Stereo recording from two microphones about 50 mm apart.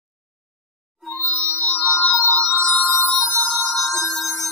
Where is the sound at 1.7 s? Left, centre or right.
Left.